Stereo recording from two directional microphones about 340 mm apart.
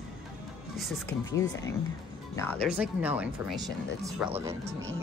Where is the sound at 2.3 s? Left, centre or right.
Centre.